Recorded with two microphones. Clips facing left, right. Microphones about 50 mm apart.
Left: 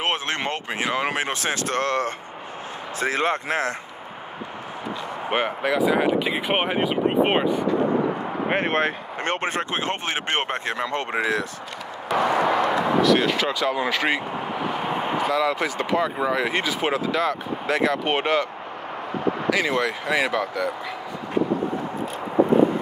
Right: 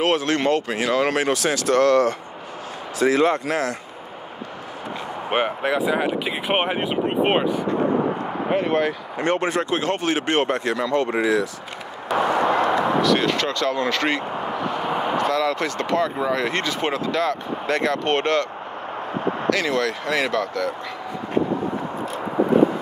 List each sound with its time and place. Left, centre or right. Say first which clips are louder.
0.0 s speech: right 5 dB; left
1.3 s speech: right 5 dB; left
5.9 s speech: left 2 dB; centre
8.5 s speech: right 2 dB; left
12.1 s vehicle: right 1 dB; centre
12.6 s speech: even; centre
19.5 s speech: right 1 dB; centre